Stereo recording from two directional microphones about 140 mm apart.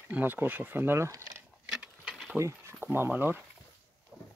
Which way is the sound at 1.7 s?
5° right (ahead or behind).